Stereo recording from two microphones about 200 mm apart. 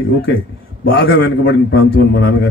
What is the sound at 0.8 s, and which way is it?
A man's voice, 55° left (ahead or behind).